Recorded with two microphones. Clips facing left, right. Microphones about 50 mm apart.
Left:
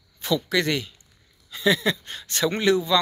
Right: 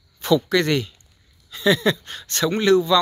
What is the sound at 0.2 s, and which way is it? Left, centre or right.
Speech, centre.